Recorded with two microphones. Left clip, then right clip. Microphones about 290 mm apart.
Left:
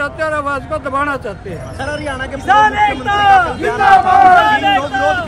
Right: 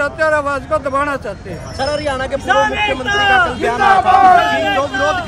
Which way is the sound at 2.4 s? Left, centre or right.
Centre.